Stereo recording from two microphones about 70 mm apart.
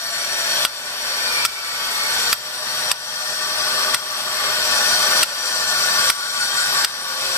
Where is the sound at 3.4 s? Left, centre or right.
Left.